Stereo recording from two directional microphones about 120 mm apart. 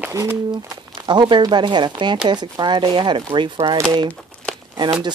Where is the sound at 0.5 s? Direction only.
40° right (ahead or behind).